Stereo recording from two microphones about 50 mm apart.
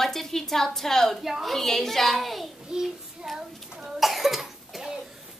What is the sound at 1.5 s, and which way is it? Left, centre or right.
A woman's voice, centre.